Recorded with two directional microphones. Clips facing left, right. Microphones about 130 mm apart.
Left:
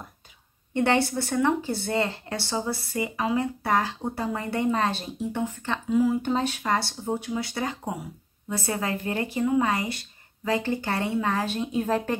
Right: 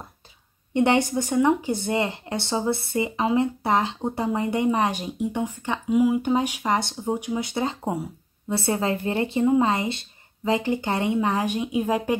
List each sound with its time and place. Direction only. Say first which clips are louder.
0.7 s speech: right 3 dB; 20° right (ahead or behind)